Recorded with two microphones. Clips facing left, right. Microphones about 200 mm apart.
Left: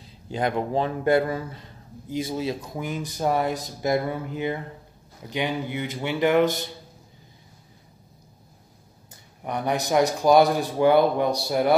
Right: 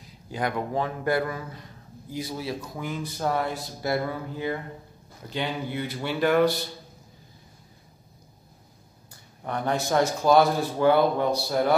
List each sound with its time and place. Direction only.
0.0 s a man's voice: 25° left (ahead or behind)
9.1 s a man's voice: 15° left (ahead or behind)